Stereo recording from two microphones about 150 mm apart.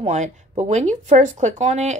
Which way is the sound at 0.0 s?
50° right (ahead or behind).